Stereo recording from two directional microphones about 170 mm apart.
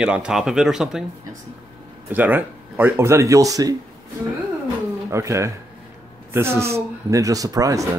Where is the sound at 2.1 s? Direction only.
10° right (ahead or behind).